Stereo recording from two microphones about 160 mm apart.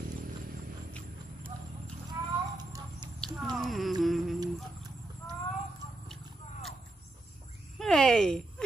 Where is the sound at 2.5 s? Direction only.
25° right (ahead or behind).